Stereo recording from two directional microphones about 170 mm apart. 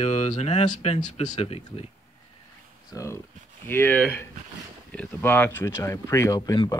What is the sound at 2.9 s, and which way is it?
Speech, 20° left (ahead or behind).